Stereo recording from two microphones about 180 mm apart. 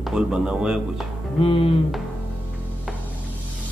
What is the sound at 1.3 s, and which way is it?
Speech, 30° left (ahead or behind).